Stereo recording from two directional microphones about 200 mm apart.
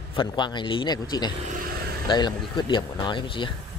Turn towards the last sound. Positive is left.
turn(degrees=25)  # may be behind; listen again after turning